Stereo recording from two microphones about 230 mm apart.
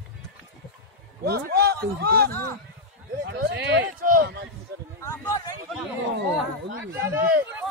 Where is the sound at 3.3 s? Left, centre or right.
Right.